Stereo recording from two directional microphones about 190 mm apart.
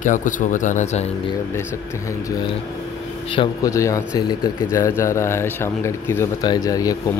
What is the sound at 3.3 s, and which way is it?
Speech, 25° left (ahead or behind).